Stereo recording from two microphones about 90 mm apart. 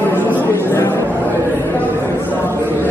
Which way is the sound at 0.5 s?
25° left (ahead or behind).